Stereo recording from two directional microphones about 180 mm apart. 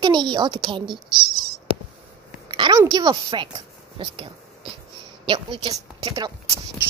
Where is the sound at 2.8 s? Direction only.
20° right (ahead or behind).